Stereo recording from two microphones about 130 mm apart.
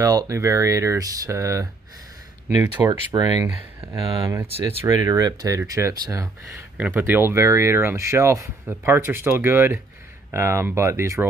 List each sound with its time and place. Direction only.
0.0 s speech: 25° right (ahead or behind)
4.6 s speech: 30° right (ahead or behind)